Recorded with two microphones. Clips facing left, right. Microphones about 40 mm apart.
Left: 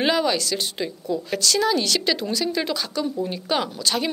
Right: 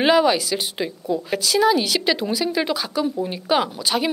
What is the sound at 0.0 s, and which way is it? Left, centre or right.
A woman's voice, centre.